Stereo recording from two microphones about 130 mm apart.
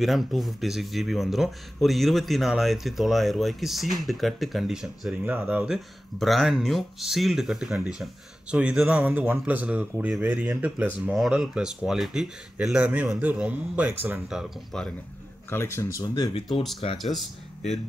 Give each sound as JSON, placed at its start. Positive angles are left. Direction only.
{"t": 0.0, "sound": "a man's voice", "side_deg": 0}
{"t": 5.2, "sound": "speech", "side_deg": -10}
{"t": 6.1, "sound": "speech", "side_deg": 0}
{"t": 14.3, "sound": "a man's voice", "side_deg": 0}
{"t": 15.5, "sound": "speech", "side_deg": 20}
{"t": 16.0, "sound": "speech", "side_deg": 35}
{"t": 17.0, "sound": "a man's voice", "side_deg": 0}